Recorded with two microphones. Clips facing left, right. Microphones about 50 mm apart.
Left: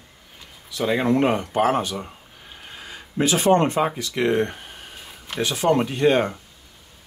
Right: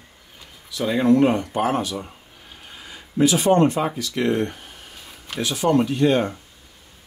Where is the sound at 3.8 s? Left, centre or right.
Left.